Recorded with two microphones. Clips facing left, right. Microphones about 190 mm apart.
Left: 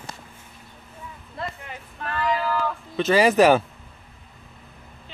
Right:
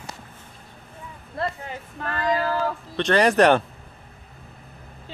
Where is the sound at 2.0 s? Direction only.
40° right (ahead or behind).